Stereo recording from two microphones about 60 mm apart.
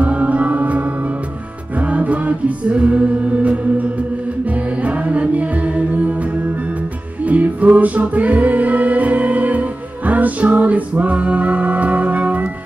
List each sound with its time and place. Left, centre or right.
0.0 s music: right
7.2 s music: right